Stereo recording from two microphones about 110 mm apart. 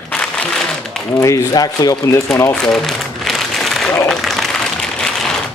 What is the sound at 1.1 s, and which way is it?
Speech, 30° left (ahead or behind).